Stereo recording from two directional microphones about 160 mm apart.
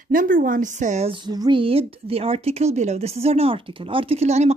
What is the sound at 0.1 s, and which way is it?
Speech, 60° right (ahead or behind).